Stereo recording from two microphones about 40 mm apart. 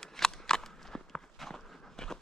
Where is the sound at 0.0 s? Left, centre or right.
Centre.